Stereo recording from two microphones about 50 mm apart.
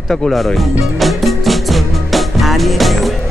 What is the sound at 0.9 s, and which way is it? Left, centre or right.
Music, centre.